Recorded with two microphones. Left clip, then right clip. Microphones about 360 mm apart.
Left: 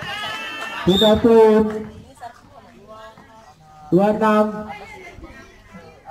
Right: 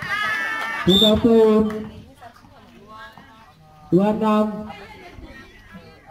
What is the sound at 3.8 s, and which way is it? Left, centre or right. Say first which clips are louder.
Speech: left 3 dB; left.